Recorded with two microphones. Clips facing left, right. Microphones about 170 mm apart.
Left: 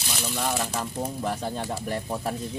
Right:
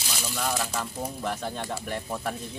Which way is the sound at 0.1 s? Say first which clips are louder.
Left 2 dB; centre (ahead or behind).